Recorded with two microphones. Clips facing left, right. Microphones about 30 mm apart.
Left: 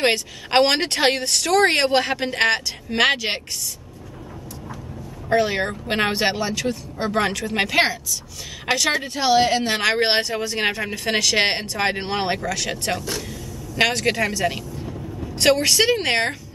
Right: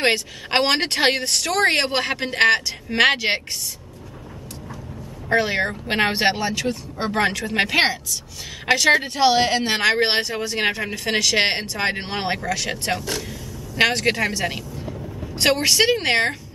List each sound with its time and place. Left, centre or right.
0.1 s speech: centre
5.3 s speech: centre
8.7 s speech: right
9.8 s speech: centre
12.5 s speech: right
13.3 s a sound: centre
13.9 s speech: centre
15.7 s speech: centre